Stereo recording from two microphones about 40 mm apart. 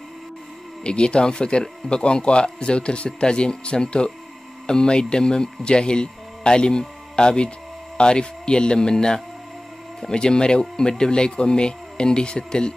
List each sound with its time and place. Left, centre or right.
0.8 s speech: left